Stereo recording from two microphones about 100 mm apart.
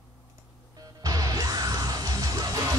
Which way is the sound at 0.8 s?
35° right (ahead or behind).